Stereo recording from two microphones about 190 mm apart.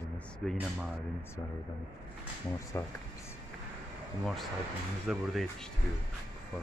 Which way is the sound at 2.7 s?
15° left (ahead or behind).